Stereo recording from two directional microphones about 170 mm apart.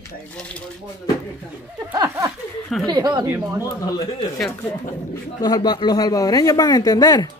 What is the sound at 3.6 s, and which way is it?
Speech, 25° left (ahead or behind).